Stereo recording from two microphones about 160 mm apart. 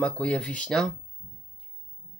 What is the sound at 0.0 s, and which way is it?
Speech, 10° left (ahead or behind).